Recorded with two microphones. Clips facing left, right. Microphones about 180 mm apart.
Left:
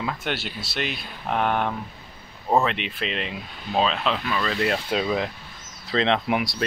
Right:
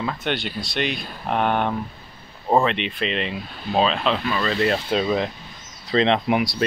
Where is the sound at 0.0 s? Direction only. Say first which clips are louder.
Right 3 dB; 5° left (ahead or behind).